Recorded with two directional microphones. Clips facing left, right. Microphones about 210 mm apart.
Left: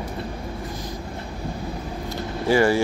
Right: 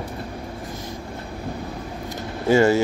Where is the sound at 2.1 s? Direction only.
20° right (ahead or behind).